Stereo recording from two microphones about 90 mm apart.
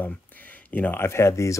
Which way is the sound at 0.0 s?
20° left (ahead or behind).